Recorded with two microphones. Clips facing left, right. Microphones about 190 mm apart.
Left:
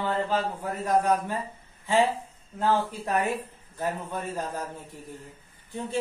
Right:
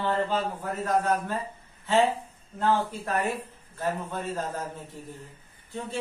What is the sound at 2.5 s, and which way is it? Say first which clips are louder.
A man's voice: even; 15° left (ahead or behind).